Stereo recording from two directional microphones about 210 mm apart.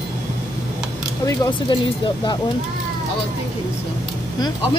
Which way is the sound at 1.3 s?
20° left (ahead or behind).